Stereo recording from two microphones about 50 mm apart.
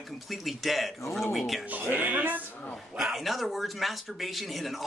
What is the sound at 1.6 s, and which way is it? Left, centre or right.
Speech, right.